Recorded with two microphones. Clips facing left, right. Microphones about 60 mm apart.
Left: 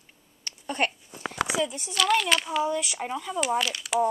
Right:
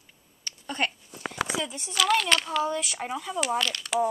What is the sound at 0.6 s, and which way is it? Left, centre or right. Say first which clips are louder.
Speech: left 2 dB; left.